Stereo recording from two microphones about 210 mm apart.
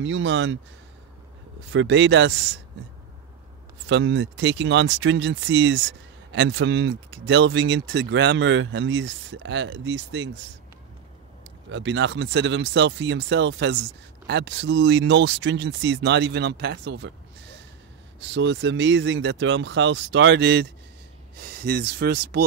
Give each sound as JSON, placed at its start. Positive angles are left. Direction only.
{"t": 0.0, "sound": "speech", "side_deg": -65}
{"t": 1.7, "sound": "speech", "side_deg": -60}
{"t": 3.9, "sound": "speech", "side_deg": -60}
{"t": 11.7, "sound": "speech", "side_deg": -60}
{"t": 18.2, "sound": "speech", "side_deg": -60}